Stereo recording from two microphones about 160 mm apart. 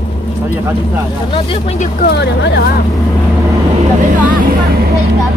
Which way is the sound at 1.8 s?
70° left (ahead or behind).